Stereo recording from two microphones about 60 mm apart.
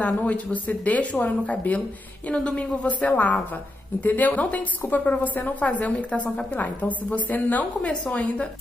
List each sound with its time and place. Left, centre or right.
0.0 s a woman's voice: left
2.3 s a woman's voice: centre; by 7.6 s left
7.8 s a woman's voice: centre